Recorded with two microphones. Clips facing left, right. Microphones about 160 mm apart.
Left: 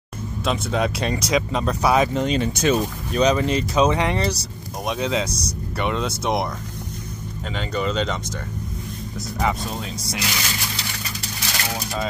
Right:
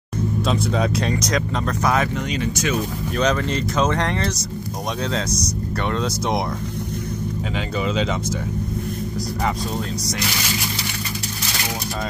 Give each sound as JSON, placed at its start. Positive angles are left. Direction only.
{"t": 0.5, "sound": "speech", "side_deg": 5}
{"t": 2.1, "sound": "speech", "side_deg": 30}
{"t": 3.2, "sound": "speech", "side_deg": 15}
{"t": 5.8, "sound": "speech", "side_deg": 5}
{"t": 7.5, "sound": "speech", "side_deg": -5}